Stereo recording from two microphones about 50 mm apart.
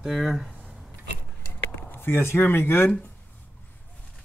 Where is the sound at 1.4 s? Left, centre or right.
Left.